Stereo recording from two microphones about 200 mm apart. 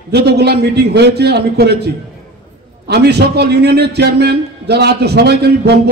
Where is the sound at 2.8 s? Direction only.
55° right (ahead or behind).